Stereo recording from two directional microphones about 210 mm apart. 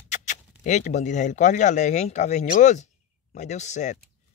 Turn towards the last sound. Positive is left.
turn(degrees=35)  # may be behind; listen again after turning